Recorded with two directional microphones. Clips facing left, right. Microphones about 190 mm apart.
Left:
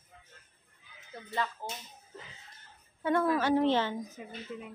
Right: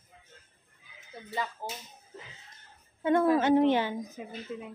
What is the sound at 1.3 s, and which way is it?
Speech, 10° right (ahead or behind).